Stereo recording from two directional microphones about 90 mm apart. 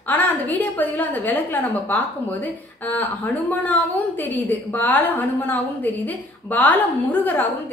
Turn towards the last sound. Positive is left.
turn(degrees=20)  # may be behind; listen again after turning